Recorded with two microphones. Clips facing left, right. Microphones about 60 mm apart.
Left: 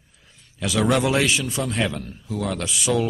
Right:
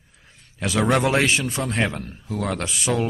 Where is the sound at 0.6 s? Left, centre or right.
Right.